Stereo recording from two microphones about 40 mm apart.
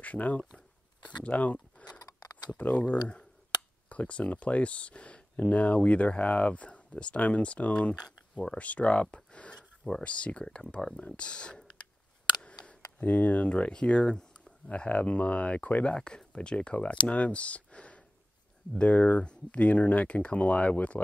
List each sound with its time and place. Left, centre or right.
0.0 s speech: left
12.4 s camera: left
13.0 s speech: left
14.9 s speech: left